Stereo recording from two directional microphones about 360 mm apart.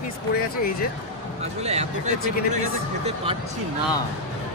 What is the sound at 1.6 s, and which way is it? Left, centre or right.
Speech, centre.